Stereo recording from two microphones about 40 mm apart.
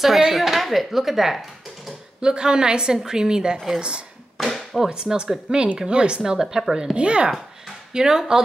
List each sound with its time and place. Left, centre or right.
0.2 s speech: centre
2.2 s a woman's voice: right
4.4 s a sound: centre
4.8 s a woman's voice: right
6.3 s speech: centre
7.0 s a woman's voice: right
7.9 s speech: centre